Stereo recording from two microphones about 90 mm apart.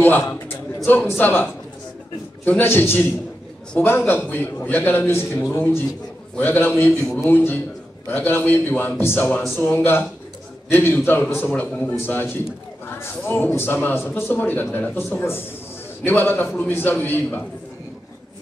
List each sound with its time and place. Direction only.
0.0 s speech: 25° left (ahead or behind)
12.8 s speech: 25° left (ahead or behind)